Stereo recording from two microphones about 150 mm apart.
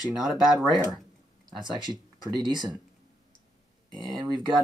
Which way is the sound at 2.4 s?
30° right (ahead or behind).